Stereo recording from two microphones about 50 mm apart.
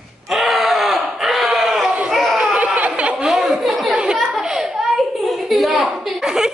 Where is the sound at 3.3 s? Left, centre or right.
Centre.